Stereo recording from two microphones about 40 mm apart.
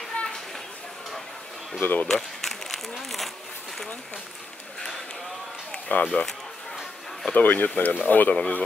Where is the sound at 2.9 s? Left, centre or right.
Centre.